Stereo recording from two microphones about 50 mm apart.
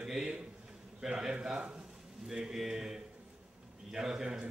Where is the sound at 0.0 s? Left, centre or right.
Centre.